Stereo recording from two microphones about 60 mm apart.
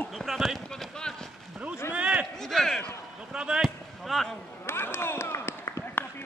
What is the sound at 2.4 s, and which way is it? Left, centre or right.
Speech, centre.